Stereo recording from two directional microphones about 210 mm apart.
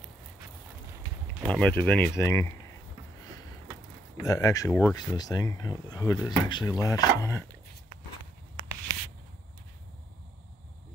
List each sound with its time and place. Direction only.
1.5 s speech: 5° left (ahead or behind)
4.2 s speech: 15° left (ahead or behind)